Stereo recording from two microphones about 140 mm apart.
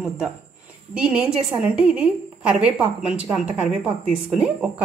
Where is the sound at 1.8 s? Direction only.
10° right (ahead or behind).